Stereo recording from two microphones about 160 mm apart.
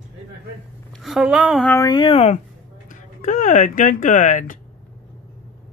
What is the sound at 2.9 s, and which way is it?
Speech, 55° left (ahead or behind).